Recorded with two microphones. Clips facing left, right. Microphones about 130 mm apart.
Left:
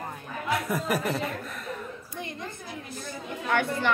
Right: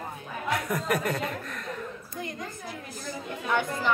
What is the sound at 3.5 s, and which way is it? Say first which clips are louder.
Speech: left 2 dB; 65° left (ahead or behind).